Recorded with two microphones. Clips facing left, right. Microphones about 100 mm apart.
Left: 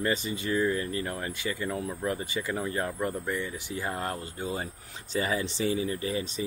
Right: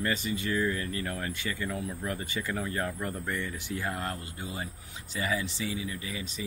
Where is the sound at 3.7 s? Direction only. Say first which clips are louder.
Left 1 dB; 25° left (ahead or behind).